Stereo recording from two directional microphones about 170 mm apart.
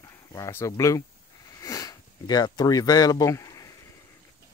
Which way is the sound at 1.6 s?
20° left (ahead or behind).